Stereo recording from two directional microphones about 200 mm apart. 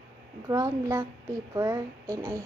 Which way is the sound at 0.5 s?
15° right (ahead or behind).